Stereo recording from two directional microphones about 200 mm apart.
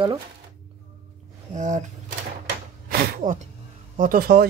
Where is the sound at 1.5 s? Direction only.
35° right (ahead or behind).